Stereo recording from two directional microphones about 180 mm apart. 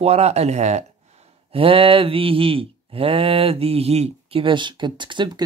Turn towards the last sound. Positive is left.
turn(degrees=-25)  # may be behind; listen again after turning